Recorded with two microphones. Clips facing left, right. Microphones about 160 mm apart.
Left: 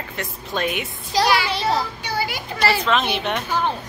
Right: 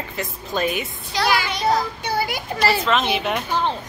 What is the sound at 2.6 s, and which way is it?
Speech, centre (ahead or behind).